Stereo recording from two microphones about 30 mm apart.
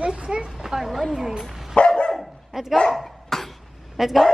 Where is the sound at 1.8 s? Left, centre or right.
Left.